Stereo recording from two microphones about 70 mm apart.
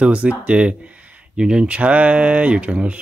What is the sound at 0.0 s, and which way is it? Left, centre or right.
Speech, centre.